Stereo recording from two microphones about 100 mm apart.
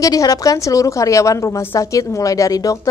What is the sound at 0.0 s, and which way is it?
A woman's voice, 35° left (ahead or behind).